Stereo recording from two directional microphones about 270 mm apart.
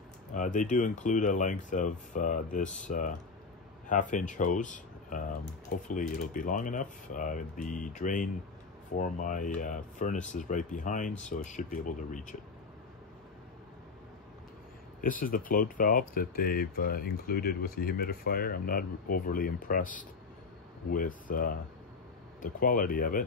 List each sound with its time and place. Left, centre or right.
0.3 s speech: left
15.0 s speech: left